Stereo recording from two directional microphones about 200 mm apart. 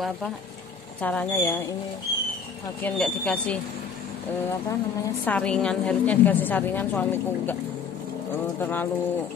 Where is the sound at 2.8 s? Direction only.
5° left (ahead or behind).